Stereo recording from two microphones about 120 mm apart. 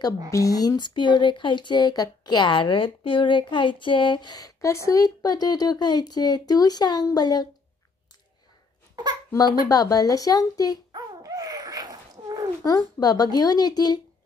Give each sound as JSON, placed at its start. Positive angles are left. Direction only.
{"t": 0.3, "sound": "speech", "side_deg": 30}
{"t": 9.3, "sound": "speech", "side_deg": 30}
{"t": 10.9, "sound": "babbling", "side_deg": -30}
{"t": 12.6, "sound": "speech", "side_deg": 30}